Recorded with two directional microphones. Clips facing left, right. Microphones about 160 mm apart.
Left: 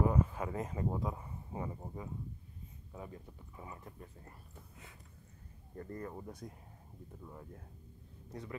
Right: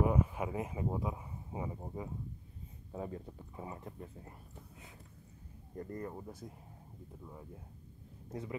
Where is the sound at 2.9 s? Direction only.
30° right (ahead or behind).